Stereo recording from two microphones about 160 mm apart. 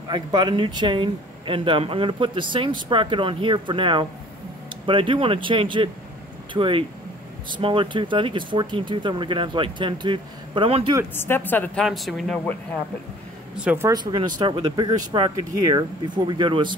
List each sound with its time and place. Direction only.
0.1 s speech: 25° right (ahead or behind)
11.1 s a woman's voice: 15° left (ahead or behind)
11.8 s speech: centre (ahead or behind)
13.6 s speech: 10° right (ahead or behind)
13.8 s speech: 25° right (ahead or behind)